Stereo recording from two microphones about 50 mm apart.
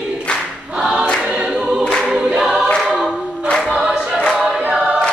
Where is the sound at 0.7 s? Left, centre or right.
Centre.